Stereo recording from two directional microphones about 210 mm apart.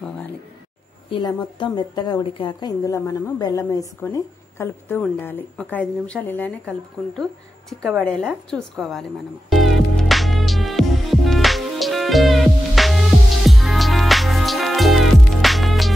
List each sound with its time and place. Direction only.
1.1 s a woman's voice: 20° left (ahead or behind)
7.8 s a woman's voice: centre (ahead or behind)
9.5 s music: centre (ahead or behind)